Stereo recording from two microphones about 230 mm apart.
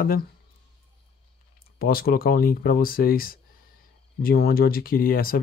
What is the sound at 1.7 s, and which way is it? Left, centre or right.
Speech, left.